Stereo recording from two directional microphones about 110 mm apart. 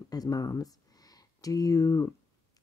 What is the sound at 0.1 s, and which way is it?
Speech, 35° left (ahead or behind).